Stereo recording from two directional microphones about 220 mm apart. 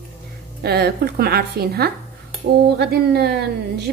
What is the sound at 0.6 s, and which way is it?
A woman's voice, 45° right (ahead or behind).